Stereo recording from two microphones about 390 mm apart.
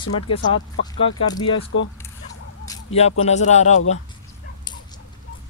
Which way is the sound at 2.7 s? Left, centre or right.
Centre.